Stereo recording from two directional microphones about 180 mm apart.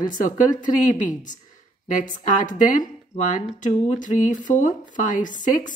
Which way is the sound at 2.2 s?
45° left (ahead or behind).